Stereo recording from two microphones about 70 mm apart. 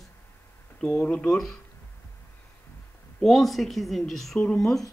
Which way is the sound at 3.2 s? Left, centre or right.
Centre.